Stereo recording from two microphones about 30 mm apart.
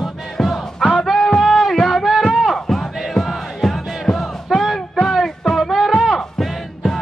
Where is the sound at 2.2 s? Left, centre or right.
Centre.